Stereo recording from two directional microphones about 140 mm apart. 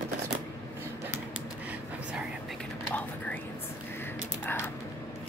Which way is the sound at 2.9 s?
10° left (ahead or behind).